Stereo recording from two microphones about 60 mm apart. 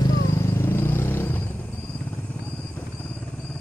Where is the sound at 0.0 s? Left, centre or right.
Left.